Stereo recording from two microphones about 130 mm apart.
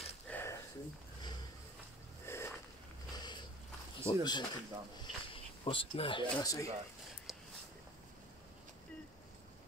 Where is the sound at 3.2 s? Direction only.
35° left (ahead or behind).